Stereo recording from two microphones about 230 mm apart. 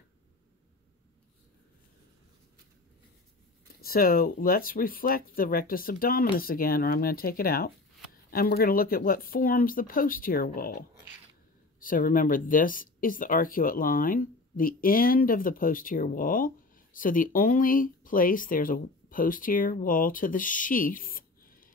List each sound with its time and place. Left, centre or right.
3.8 s speech: left
11.8 s speech: left